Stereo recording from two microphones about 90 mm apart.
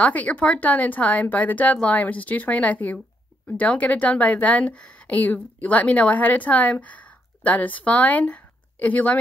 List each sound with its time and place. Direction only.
0.0 s a woman's voice: 15° left (ahead or behind)